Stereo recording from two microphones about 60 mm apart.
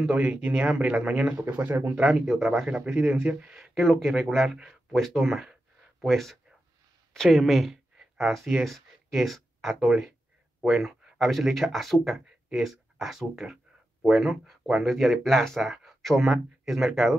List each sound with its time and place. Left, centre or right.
0.0 s speech: centre
1.4 s speech: right
2.0 s speech: centre
3.5 s speech: centre
4.9 s a sound: centre
6.0 s speech: centre
10.6 s a sound: centre
11.1 s speech: centre